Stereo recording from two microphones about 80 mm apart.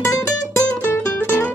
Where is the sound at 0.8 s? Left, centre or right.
Left.